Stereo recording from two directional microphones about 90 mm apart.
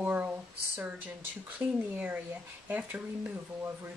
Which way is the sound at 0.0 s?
20° right (ahead or behind).